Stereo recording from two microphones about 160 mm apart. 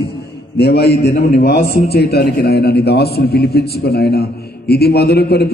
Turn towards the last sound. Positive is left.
turn(degrees=90)